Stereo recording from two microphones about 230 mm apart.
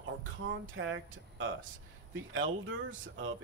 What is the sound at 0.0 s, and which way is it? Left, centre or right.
Speech, right.